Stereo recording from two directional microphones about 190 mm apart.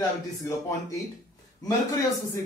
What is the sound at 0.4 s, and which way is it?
A man's voice, 15° left (ahead or behind).